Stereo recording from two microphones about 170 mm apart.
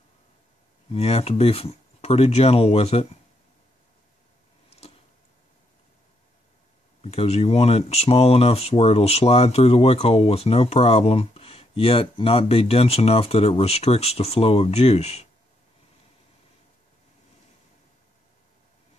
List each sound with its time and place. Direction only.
0.8 s speech: 35° left (ahead or behind)
4.6 s a sound: 35° left (ahead or behind)
7.0 s speech: 35° left (ahead or behind)